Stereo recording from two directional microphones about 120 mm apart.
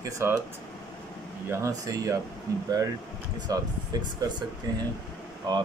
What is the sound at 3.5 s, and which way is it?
A man's voice, 30° right (ahead or behind).